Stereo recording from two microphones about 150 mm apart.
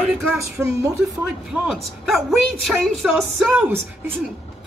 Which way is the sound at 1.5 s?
Centre (ahead or behind).